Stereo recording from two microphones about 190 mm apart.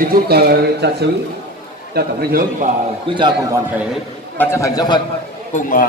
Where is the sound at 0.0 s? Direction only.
50° right (ahead or behind).